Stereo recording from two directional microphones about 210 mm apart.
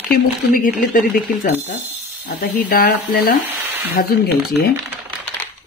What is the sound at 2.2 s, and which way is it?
Speech, 45° left (ahead or behind).